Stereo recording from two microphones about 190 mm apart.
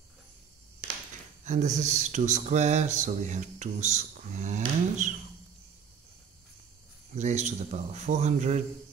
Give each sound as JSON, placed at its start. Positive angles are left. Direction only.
{"t": 1.4, "sound": "speech", "side_deg": -40}
{"t": 7.2, "sound": "speech", "side_deg": -40}